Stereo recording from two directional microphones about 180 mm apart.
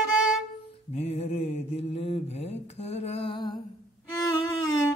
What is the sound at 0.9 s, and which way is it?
Mantra, 35° left (ahead or behind).